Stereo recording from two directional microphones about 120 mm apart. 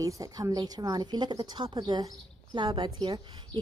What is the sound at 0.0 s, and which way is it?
A woman's voice, 30° right (ahead or behind).